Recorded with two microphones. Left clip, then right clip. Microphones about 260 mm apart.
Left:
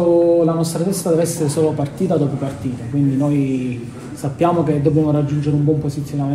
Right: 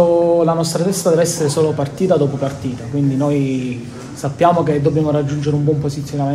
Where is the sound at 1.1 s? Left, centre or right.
Centre.